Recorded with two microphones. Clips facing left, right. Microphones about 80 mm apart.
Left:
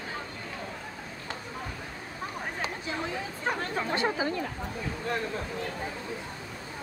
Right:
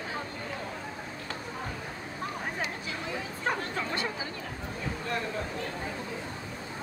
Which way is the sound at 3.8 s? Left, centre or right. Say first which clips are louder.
Left 3 dB; left.